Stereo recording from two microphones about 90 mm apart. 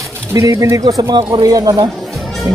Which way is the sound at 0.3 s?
35° right (ahead or behind).